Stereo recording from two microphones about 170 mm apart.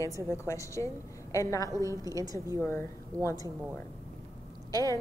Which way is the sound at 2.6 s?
15° left (ahead or behind).